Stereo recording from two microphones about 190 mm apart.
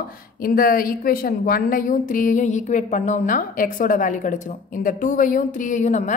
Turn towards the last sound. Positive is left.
turn(degrees=40)  # may be behind; listen again after turning